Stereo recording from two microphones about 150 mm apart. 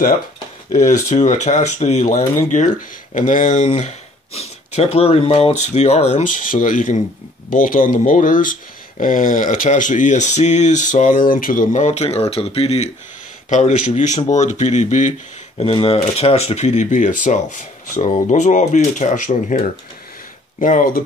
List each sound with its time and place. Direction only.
0.7 s speech: 55° left (ahead or behind)
15.5 s speech: 40° left (ahead or behind); by 21.0 s 65° left (ahead or behind)